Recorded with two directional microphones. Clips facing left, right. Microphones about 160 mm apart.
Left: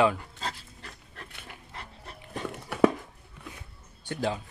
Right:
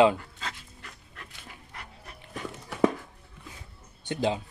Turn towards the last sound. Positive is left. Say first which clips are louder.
# right 3 dB
turn(degrees=-20)  # may be behind; listen again after turning